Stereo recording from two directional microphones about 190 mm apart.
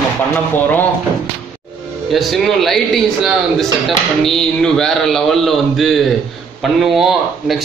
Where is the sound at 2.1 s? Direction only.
Centre (ahead or behind).